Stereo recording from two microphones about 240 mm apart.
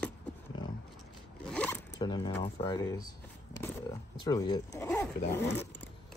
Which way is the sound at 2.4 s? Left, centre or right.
Centre.